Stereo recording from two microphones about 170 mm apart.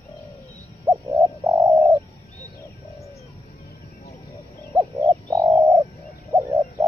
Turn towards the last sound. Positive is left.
turn(degrees=-20)  # may be behind; listen again after turning